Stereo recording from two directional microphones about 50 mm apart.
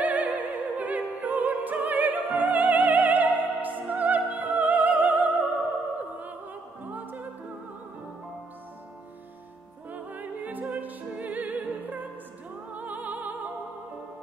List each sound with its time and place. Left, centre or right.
0.0 s opera: right
6.9 s music: right
9.8 s music: right